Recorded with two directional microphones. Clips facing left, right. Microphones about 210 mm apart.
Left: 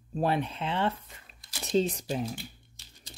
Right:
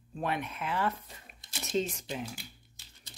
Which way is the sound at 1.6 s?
35° left (ahead or behind).